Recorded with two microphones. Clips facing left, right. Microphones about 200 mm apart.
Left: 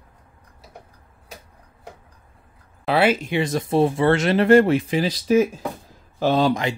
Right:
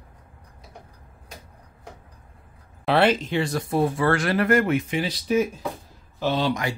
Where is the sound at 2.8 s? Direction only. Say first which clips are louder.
Left 1 dB; 5° left (ahead or behind); by 5.1 s 35° left (ahead or behind).